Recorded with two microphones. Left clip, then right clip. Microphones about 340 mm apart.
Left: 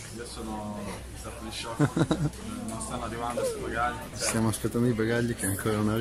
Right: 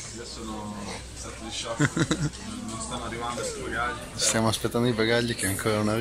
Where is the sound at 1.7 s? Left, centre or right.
Centre.